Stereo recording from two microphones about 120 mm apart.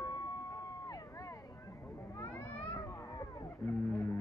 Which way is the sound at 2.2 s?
20° left (ahead or behind).